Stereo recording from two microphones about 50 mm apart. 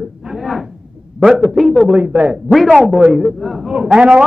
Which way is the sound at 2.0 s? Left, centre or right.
Right.